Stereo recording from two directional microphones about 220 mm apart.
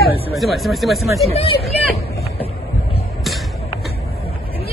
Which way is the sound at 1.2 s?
25° left (ahead or behind).